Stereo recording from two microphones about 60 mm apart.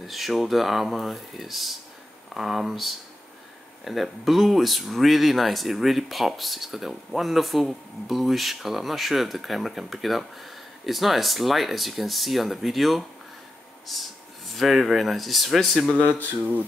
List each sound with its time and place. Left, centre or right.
0.0 s speech: centre
16.1 s speech: left